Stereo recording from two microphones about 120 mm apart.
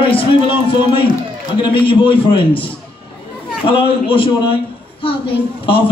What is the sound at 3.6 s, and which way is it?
A man's voice, 45° left (ahead or behind).